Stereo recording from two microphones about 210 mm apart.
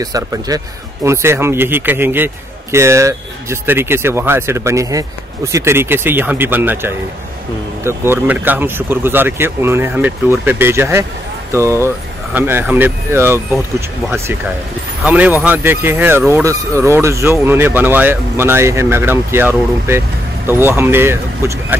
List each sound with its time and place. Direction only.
0.0 s a man's voice: 15° right (ahead or behind)